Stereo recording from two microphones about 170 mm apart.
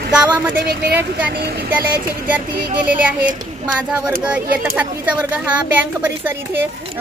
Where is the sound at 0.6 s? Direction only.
70° right (ahead or behind).